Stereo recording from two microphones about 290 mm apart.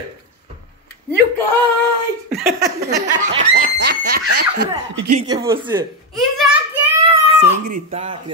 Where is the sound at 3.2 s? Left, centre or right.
Right.